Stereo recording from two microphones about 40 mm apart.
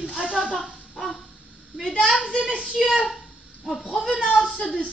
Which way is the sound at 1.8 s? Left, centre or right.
Centre.